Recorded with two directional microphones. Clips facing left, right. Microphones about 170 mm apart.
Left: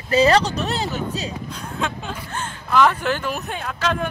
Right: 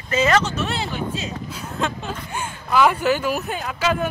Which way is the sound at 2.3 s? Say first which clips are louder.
Left 1 dB; 10° right (ahead or behind).